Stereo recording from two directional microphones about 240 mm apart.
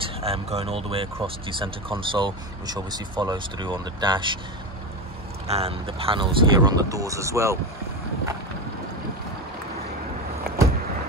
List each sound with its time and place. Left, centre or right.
0.2 s speech: right
5.5 s speech: right